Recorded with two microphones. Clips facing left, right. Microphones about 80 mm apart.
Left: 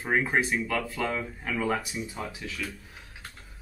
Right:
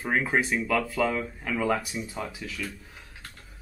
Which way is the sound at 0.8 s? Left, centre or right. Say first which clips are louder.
Right 4 dB; centre.